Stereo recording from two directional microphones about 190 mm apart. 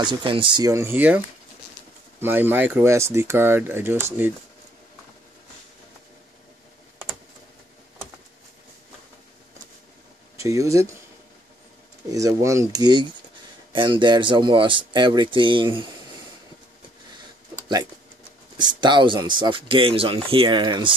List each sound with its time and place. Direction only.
0.0 s speech: 25° right (ahead or behind)
10.3 s speech: 15° right (ahead or behind)
12.1 s speech: 15° right (ahead or behind)
18.6 s speech: 25° right (ahead or behind)